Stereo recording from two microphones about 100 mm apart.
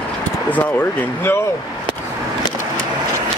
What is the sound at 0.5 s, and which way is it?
Speech, 15° left (ahead or behind).